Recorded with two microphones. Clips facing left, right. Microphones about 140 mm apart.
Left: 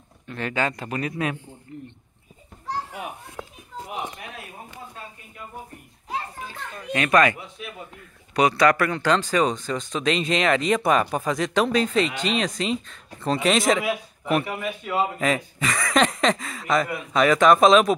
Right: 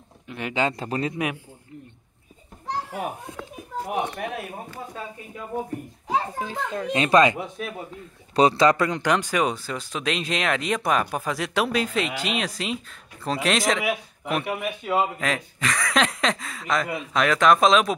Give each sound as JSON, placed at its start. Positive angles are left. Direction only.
{"t": 0.3, "sound": "speech", "side_deg": -15}
{"t": 1.1, "sound": "a man's voice", "side_deg": -15}
{"t": 3.4, "sound": "a sound", "side_deg": 15}
{"t": 3.8, "sound": "speech", "side_deg": -65}
{"t": 6.0, "sound": "a child's voice", "side_deg": -90}
{"t": 6.9, "sound": "speech", "side_deg": -25}
{"t": 8.4, "sound": "speech", "side_deg": -25}